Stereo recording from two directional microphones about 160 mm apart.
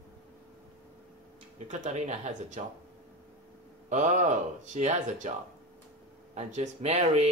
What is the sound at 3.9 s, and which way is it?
Speech, 50° right (ahead or behind).